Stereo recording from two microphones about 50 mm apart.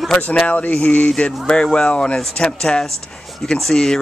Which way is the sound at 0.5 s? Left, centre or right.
Left.